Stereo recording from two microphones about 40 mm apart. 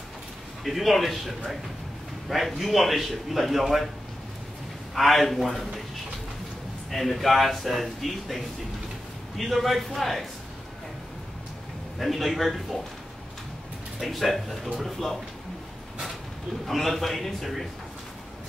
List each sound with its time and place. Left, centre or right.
0.7 s a man's voice: centre
4.9 s a man's voice: centre
6.9 s a man's voice: centre
12.0 s a man's voice: centre
13.9 s a man's voice: centre
16.6 s a man's voice: centre